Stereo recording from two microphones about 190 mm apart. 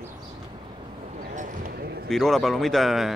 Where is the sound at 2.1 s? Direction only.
Centre (ahead or behind).